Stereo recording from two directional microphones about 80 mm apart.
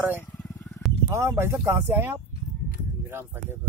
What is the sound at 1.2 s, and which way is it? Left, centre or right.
Speech, right.